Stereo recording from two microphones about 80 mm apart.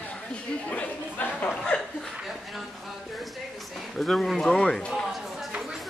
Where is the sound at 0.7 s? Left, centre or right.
Centre.